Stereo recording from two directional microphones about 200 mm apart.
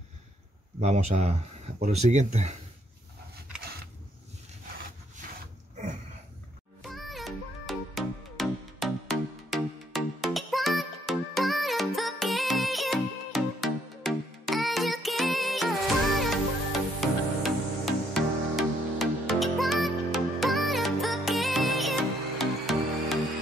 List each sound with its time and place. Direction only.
0.7 s speech: 35° right (ahead or behind)
6.8 s music: centre (ahead or behind)